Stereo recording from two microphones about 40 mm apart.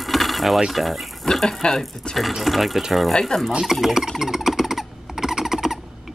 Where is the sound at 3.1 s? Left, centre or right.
Centre.